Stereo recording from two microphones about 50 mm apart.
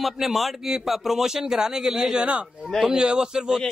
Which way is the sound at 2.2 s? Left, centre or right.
Right.